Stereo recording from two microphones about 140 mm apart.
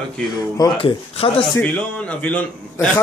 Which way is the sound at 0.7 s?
40° left (ahead or behind).